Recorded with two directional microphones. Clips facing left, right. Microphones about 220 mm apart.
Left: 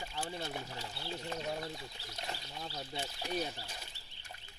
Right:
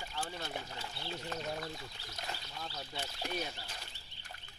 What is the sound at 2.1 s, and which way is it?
Speech, 25° left (ahead or behind).